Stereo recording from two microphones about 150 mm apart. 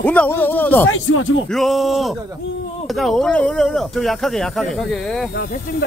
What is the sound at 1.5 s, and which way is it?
Speech, centre (ahead or behind).